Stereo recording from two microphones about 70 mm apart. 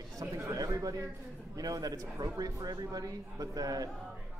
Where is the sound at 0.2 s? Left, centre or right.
Right.